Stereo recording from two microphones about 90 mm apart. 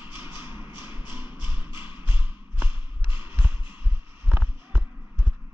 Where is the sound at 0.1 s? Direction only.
25° right (ahead or behind).